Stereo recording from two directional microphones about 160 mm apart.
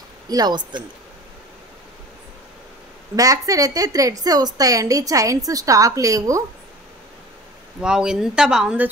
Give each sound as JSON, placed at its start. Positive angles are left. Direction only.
{"t": 0.3, "sound": "a woman's voice", "side_deg": -25}
{"t": 3.2, "sound": "a woman's voice", "side_deg": -20}
{"t": 7.8, "sound": "speech", "side_deg": -5}